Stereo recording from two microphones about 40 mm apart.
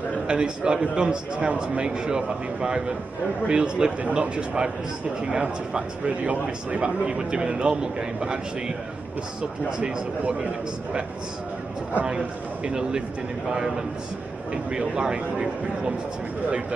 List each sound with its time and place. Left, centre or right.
0.3 s a man's voice: right
6.0 s a man's voice: right
6.8 s a man's voice: right
13.5 s a man's voice: centre